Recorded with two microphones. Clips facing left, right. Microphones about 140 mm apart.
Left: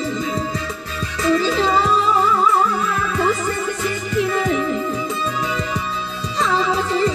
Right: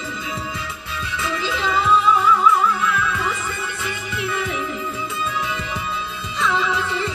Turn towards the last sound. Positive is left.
turn(degrees=40)  # may be behind; listen again after turning